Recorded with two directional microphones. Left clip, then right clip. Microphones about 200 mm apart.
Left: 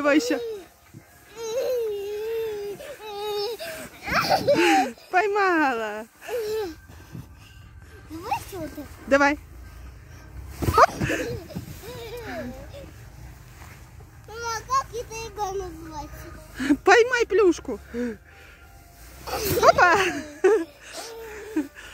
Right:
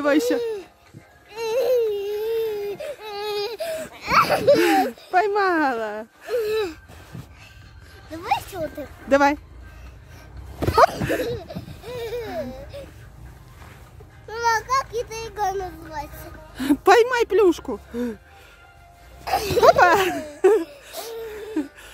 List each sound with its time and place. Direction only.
0.0 s speech: 5° right (ahead or behind)
1.5 s baby cry: 25° right (ahead or behind)
4.1 s speech: 15° right (ahead or behind)
9.1 s speech: 10° right (ahead or behind)
10.6 s a sound: 10° right (ahead or behind)
14.3 s children playing: 20° right (ahead or behind)
14.7 s speech: 20° right (ahead or behind)
19.2 s a sound: 25° right (ahead or behind); by 21.9 s 10° right (ahead or behind)